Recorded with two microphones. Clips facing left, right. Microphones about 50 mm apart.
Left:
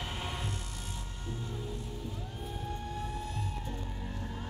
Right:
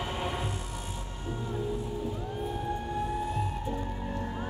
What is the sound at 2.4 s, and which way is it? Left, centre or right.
Music, centre.